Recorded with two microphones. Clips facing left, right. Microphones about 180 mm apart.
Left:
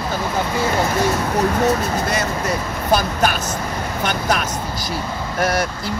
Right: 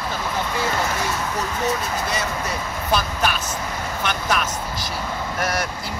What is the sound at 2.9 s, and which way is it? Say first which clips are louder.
Speech: left 4 dB; 45° left (ahead or behind).